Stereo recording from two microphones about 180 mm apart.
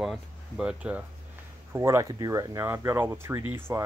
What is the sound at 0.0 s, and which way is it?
Speech, 5° right (ahead or behind).